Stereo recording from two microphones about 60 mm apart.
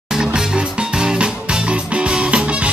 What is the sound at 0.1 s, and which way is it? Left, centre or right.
Music, centre.